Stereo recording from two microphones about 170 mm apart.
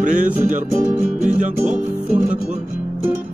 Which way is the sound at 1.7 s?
10° right (ahead or behind).